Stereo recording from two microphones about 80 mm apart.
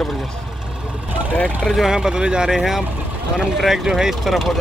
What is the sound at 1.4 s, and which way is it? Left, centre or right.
Speech, centre.